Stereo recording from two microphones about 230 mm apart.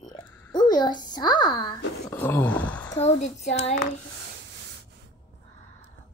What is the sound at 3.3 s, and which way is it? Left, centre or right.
Child singing, left.